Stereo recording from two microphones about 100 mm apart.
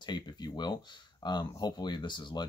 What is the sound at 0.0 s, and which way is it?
Speech, 45° left (ahead or behind).